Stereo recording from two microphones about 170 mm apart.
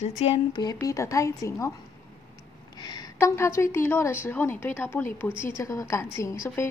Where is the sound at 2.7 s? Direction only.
25° left (ahead or behind).